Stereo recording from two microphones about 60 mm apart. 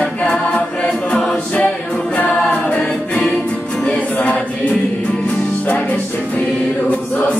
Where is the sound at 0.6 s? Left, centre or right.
Left.